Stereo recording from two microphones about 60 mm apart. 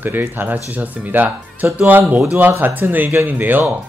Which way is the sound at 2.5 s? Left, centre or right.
Right.